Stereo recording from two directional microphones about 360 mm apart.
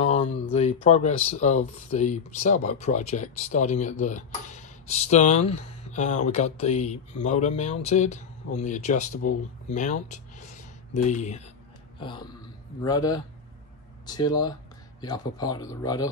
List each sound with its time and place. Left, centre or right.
0.0 s speech: centre